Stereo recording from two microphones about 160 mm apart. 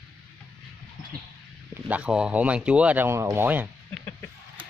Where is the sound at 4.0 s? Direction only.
10° left (ahead or behind).